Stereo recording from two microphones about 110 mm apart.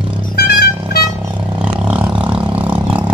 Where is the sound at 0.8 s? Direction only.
45° right (ahead or behind).